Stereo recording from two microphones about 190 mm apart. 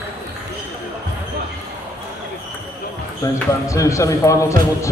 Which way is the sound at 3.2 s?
15° left (ahead or behind).